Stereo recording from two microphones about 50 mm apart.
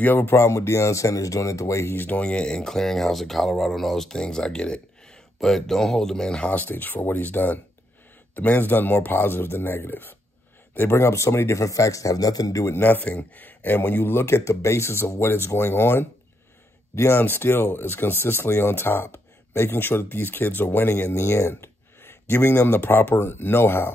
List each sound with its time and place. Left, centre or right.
0.0 s speech: left
0.3 s speech: left
2.0 s speech: left
2.2 s speech: centre
6.7 s speech: left
10.9 s speech: left
12.7 s speech: left
16.9 s speech: left
17.3 s speech: left
20.9 s speech: left